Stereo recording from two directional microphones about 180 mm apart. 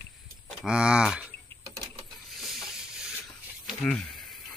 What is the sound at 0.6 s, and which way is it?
Speech, 5° right (ahead or behind).